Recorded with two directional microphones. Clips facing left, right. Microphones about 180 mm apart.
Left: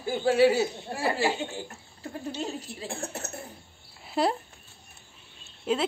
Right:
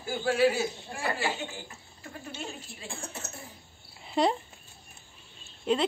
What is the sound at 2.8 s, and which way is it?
Speech, 65° left (ahead or behind).